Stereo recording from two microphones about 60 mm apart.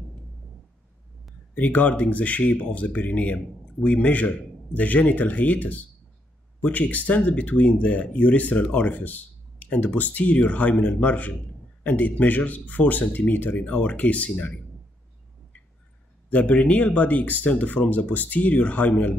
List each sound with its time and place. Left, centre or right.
1.5 s speech: left
16.3 s speech: left